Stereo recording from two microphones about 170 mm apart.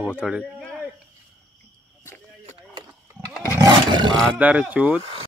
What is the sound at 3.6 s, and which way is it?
Roar, 25° right (ahead or behind).